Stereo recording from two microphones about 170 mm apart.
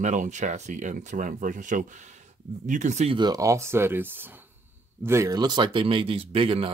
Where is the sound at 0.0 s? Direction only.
45° right (ahead or behind).